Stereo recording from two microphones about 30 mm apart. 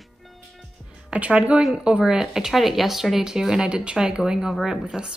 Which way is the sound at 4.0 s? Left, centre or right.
Right.